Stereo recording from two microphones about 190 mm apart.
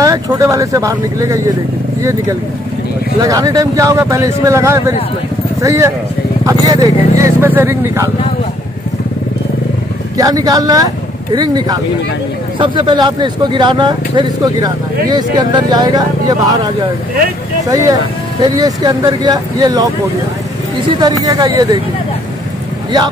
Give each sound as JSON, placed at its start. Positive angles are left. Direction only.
{"t": 0.0, "sound": "speech", "side_deg": -20}
{"t": 3.2, "sound": "speech", "side_deg": -20}
{"t": 10.1, "sound": "speech", "side_deg": -20}
{"t": 17.6, "sound": "speech", "side_deg": -15}
{"t": 21.2, "sound": "speech", "side_deg": -20}